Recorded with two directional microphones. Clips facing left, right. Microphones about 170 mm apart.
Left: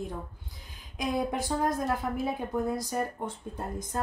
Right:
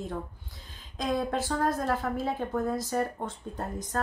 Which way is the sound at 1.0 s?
15° left (ahead or behind).